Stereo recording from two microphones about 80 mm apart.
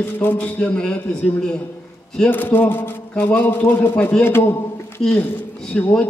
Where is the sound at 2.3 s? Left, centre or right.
Left.